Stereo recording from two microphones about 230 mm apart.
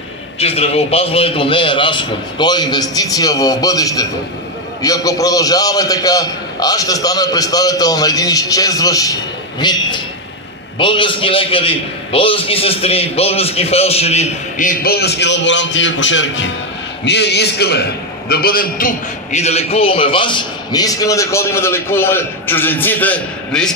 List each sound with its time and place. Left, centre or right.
0.4 s a man's voice: left; by 23.7 s centre